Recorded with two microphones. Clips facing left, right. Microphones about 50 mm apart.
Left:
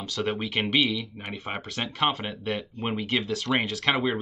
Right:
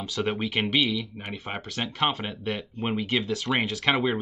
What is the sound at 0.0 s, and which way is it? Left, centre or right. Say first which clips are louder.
Speech: right 1 dB; centre.